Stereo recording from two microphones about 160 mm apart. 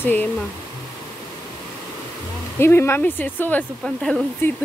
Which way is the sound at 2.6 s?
15° left (ahead or behind).